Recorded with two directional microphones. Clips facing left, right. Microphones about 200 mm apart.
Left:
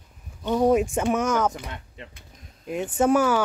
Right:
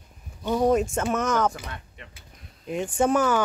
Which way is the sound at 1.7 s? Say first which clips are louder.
Left 2 dB; 30° left (ahead or behind).